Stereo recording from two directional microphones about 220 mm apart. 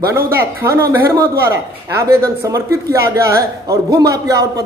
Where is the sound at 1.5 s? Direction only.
45° right (ahead or behind).